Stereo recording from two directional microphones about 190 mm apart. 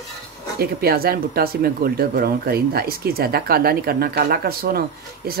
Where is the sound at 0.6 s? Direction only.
55° right (ahead or behind).